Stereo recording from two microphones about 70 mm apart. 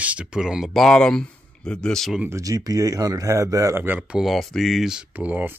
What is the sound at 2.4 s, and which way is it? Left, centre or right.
Speech, right.